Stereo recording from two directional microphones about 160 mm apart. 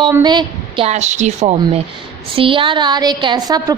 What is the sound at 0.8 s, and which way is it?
Speech, 45° right (ahead or behind).